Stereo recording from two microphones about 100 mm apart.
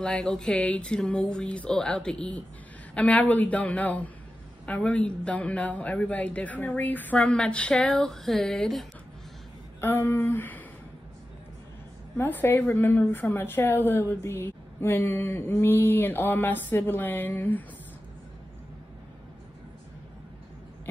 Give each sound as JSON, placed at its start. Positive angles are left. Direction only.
{"t": 0.0, "sound": "speech", "side_deg": 10}
{"t": 9.8, "sound": "a woman's voice", "side_deg": 25}
{"t": 12.2, "sound": "a woman's voice", "side_deg": 20}